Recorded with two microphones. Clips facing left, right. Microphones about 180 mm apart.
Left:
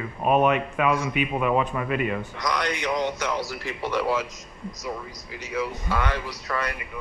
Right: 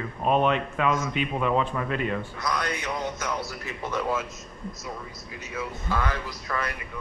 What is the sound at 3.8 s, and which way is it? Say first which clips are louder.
Speech: left 3 dB; 30° left (ahead or behind).